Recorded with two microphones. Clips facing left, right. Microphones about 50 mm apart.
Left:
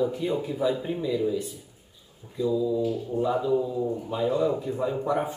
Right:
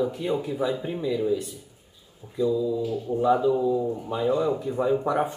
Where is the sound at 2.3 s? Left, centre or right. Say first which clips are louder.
Right 1 dB; centre.